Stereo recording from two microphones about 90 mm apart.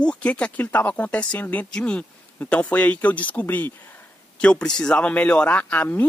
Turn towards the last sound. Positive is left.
turn(degrees=20)  # may be behind; listen again after turning